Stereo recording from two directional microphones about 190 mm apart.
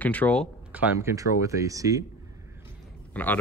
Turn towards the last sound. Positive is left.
turn(degrees=10)  # may be behind; listen again after turning